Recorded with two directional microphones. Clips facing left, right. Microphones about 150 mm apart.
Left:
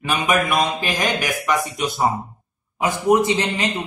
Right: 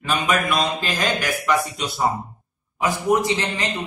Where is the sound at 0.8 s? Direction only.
15° left (ahead or behind).